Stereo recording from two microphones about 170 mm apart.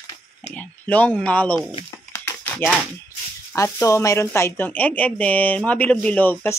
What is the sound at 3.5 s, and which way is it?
Speech, 15° left (ahead or behind).